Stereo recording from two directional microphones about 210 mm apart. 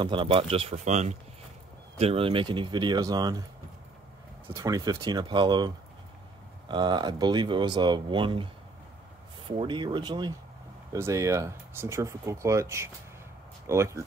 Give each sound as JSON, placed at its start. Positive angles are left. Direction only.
{"t": 0.0, "sound": "speech", "side_deg": -25}
{"t": 4.5, "sound": "speech", "side_deg": -15}
{"t": 6.7, "sound": "speech", "side_deg": -20}
{"t": 9.6, "sound": "speech", "side_deg": -20}